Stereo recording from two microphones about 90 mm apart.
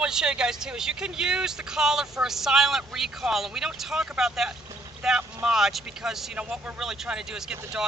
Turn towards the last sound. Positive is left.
turn(degrees=-5)  # may be behind; listen again after turning